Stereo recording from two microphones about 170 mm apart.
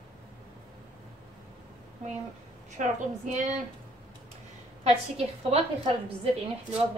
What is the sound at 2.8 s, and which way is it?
Speech, 45° right (ahead or behind).